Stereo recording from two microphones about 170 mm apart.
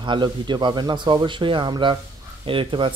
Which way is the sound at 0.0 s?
25° right (ahead or behind).